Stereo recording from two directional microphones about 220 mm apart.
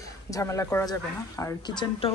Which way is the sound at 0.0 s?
15° left (ahead or behind).